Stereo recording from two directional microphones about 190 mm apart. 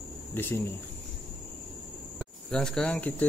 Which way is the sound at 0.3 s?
10° left (ahead or behind).